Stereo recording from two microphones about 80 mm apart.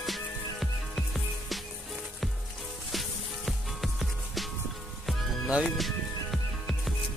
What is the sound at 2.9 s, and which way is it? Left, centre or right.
Music, centre.